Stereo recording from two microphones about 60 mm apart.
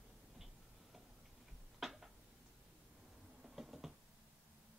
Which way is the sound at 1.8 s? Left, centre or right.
Centre.